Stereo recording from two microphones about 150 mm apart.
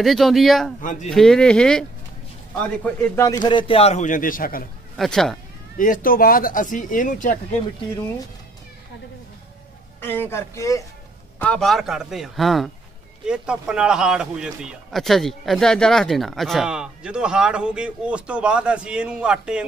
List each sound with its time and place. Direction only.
0.0 s a man's voice: centre (ahead or behind)
0.7 s speech: 60° left (ahead or behind)
1.1 s a man's voice: 5° left (ahead or behind)
3.3 s a man's voice: 30° left (ahead or behind); by 4.6 s 70° left (ahead or behind)
4.9 s a man's voice: centre (ahead or behind)
5.8 s speech: 70° left (ahead or behind)
10.0 s a man's voice: 15° left (ahead or behind)
11.3 s a man's voice: 5° left (ahead or behind)